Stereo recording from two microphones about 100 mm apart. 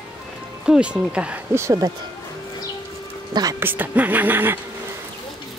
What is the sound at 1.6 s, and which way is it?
Speech, 30° right (ahead or behind).